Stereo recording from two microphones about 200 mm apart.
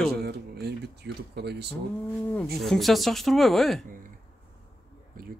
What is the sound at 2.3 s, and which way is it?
Speech, centre (ahead or behind).